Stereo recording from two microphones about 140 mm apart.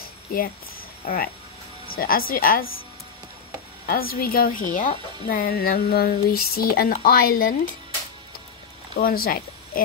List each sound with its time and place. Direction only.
1.0 s a woman's voice: 90° left
3.8 s a woman's voice: 90° left
8.9 s a woman's voice: 90° left